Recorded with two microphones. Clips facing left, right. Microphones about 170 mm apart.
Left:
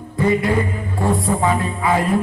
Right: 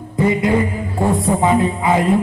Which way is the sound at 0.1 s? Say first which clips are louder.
Right 2 dB; 20° right (ahead or behind).